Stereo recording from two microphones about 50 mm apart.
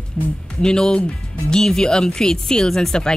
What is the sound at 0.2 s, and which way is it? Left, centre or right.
Speech, centre.